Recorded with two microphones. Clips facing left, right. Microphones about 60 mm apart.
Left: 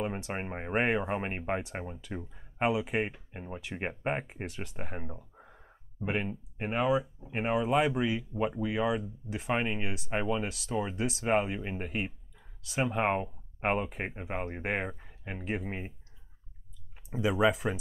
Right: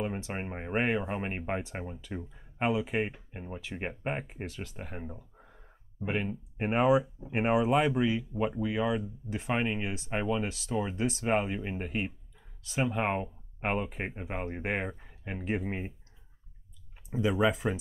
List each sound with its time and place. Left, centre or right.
0.0 s speech: centre
6.7 s speech: right
7.8 s speech: centre
17.1 s speech: centre